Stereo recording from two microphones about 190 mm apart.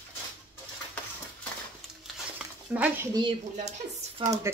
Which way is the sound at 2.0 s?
5° right (ahead or behind).